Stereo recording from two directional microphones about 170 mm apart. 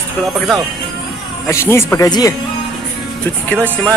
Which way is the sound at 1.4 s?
15° left (ahead or behind).